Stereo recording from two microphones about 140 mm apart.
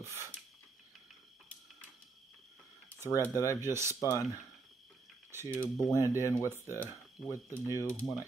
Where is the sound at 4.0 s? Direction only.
20° left (ahead or behind).